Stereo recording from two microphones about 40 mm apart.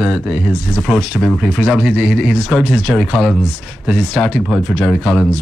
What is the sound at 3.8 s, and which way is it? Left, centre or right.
Speech, centre.